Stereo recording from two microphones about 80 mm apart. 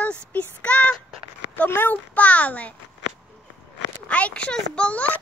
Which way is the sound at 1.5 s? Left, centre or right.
Left.